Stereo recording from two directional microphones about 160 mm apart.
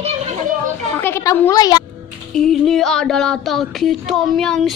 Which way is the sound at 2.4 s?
Centre (ahead or behind).